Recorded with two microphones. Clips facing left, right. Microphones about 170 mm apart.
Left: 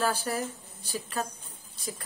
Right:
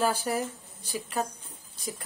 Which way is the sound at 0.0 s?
15° right (ahead or behind).